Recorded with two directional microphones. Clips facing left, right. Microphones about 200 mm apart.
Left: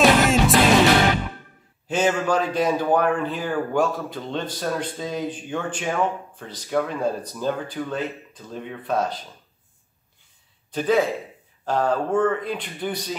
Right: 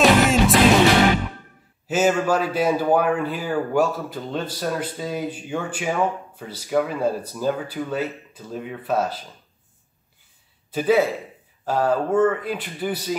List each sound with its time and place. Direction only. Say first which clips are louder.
0.0 s music: right 1 dB; centre (ahead or behind)
1.9 s a man's voice: right 2 dB; 5° right (ahead or behind)
10.7 s a man's voice: right 2 dB; 5° right (ahead or behind)